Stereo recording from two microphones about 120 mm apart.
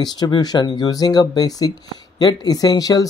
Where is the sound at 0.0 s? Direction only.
35° left (ahead or behind).